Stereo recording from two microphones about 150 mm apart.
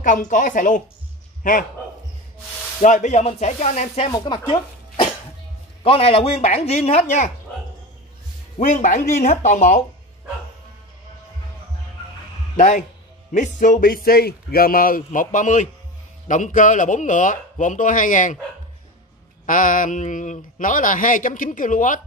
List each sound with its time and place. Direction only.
0.0 s a man's voice: 60° left (ahead or behind)
2.8 s speech: 55° left (ahead or behind)
4.1 s speech: 30° left (ahead or behind); by 7.2 s 50° left (ahead or behind)
8.5 s speech: 55° left (ahead or behind)
12.5 s speech: 50° left (ahead or behind)
19.4 s speech: 60° left (ahead or behind)